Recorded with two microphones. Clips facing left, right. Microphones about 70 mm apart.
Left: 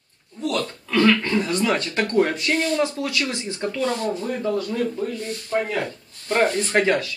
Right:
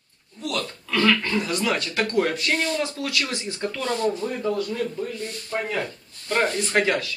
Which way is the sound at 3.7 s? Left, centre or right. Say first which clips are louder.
Even; centre.